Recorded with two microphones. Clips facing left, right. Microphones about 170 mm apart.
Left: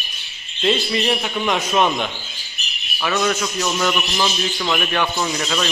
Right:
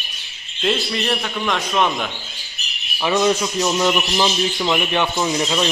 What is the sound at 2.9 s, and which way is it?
A man's voice, 25° right (ahead or behind).